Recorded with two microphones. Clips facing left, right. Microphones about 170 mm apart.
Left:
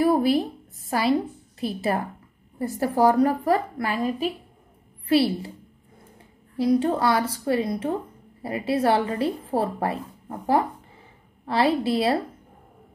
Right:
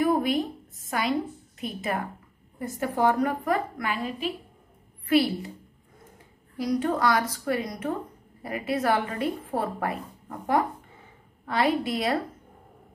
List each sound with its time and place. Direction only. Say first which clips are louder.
0.0 s a sound: left 4 dB; 35° left (ahead or behind)
0.8 s a woman's voice: left 5 dB; 35° left (ahead or behind)
5.0 s a woman's voice: left 2 dB; 30° left (ahead or behind)
6.5 s a woman's voice: left 5 dB; 25° left (ahead or behind)